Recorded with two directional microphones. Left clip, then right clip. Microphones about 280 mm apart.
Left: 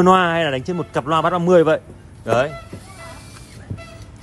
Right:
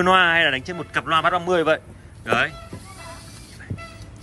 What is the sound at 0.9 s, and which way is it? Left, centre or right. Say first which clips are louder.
A man's voice: left 1 dB; left.